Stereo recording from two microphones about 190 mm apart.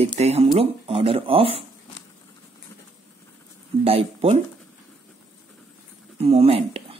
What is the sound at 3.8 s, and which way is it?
Speech, 30° right (ahead or behind).